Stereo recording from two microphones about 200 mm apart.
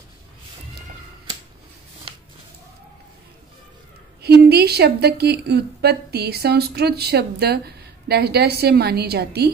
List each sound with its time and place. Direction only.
4.2 s a woman's voice: 55° right (ahead or behind)